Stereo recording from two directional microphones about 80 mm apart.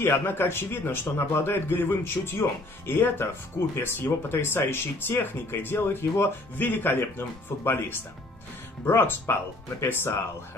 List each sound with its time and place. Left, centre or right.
0.0 s speech: left